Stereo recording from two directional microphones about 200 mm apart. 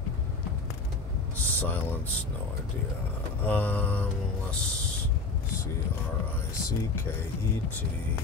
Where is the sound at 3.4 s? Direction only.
10° left (ahead or behind).